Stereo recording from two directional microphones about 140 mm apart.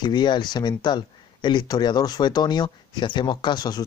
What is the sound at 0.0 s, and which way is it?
Speech, 35° left (ahead or behind).